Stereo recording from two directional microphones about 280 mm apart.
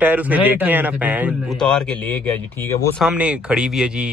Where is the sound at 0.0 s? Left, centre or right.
Centre.